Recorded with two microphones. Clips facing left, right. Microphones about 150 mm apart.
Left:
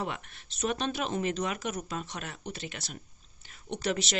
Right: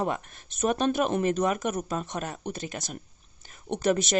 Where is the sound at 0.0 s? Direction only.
45° right (ahead or behind).